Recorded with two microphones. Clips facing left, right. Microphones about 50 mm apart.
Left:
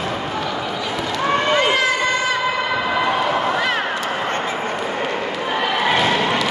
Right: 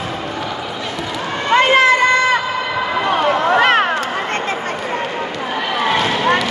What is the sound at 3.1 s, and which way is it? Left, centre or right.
Run, right.